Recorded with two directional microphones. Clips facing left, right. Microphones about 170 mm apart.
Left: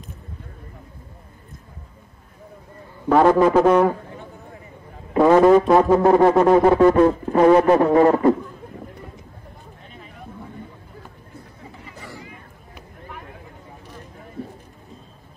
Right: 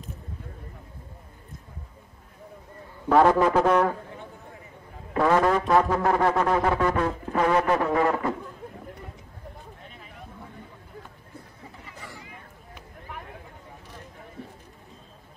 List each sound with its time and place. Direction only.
3.1 s a man's voice: 5° left (ahead or behind)
5.1 s music: 20° left (ahead or behind); by 8.4 s 35° left (ahead or behind)